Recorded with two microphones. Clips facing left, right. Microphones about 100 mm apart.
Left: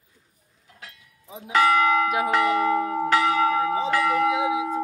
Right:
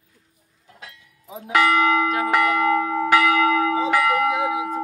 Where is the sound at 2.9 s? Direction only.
60° right (ahead or behind).